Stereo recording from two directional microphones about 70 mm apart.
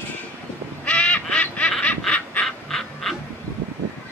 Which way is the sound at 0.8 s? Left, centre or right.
Centre.